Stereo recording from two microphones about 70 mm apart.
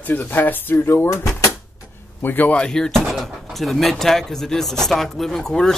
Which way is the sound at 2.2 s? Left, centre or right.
Left.